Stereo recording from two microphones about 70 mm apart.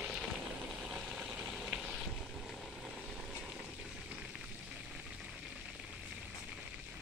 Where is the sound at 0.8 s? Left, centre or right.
Centre.